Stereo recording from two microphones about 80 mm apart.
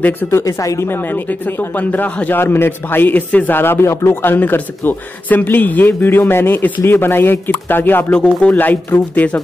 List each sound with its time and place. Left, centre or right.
0.3 s speech: left
0.8 s a man's voice: left